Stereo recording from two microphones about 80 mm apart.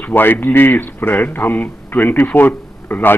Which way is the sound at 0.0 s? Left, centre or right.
Left.